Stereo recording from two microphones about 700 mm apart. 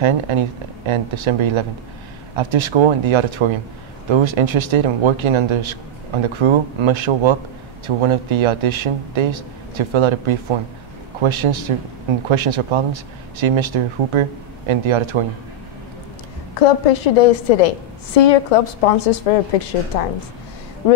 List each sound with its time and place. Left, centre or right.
0.0 s speech: right
16.5 s a woman's voice: left